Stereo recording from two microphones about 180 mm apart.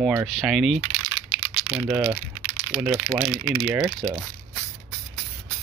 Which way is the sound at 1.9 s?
10° right (ahead or behind).